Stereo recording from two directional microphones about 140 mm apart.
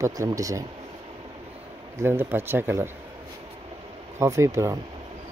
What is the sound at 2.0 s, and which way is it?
Speech, 15° right (ahead or behind).